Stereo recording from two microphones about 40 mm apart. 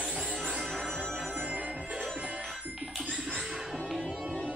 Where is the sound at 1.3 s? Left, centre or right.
Right.